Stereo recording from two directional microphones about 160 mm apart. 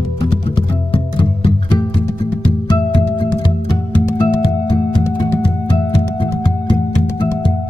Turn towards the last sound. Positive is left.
turn(degrees=30)  # may be behind; listen again after turning